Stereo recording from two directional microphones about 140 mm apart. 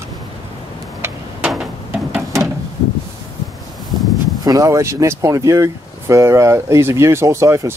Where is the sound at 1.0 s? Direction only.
10° right (ahead or behind).